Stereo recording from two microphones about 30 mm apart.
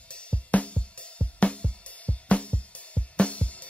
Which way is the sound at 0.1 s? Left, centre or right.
Left.